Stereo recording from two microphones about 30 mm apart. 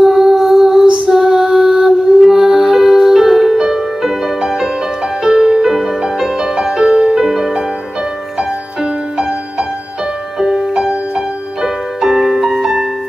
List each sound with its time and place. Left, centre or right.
0.0 s music: centre
6.3 s music: centre
11.6 s music: centre